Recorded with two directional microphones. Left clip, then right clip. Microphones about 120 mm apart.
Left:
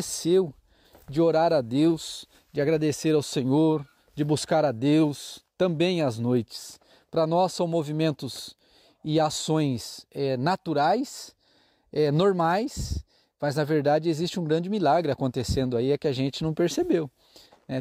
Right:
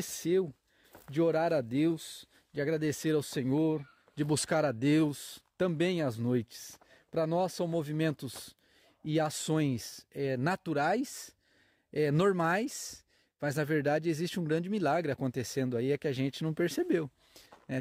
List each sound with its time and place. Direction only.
0.0 s speech: 30° left (ahead or behind)
1.1 s speech: 40° left (ahead or behind)
4.1 s speech: 30° left (ahead or behind)